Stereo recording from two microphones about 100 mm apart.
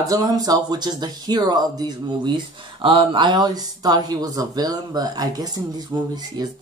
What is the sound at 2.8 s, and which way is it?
Speech, 55° right (ahead or behind).